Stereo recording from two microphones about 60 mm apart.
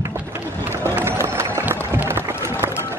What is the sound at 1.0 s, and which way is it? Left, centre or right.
Music, right.